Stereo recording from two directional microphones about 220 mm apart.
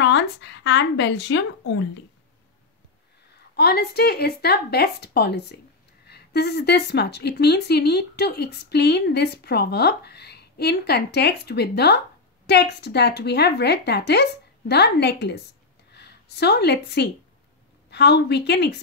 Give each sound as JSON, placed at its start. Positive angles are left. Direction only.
{"t": 0.0, "sound": "speech", "side_deg": 55}
{"t": 3.5, "sound": "speech", "side_deg": 45}